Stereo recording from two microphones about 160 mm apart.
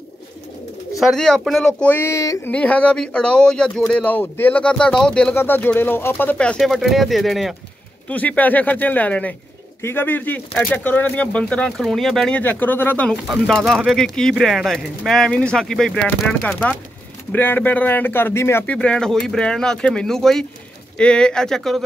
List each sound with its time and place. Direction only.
0.9 s speech: centre (ahead or behind)
1.8 s speech: 15° left (ahead or behind)
2.5 s speech: 10° left (ahead or behind)